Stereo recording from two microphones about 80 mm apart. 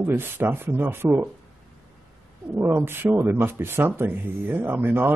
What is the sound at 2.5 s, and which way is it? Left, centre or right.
Speech, right.